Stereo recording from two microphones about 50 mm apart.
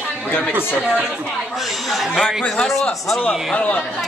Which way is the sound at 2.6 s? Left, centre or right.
Centre.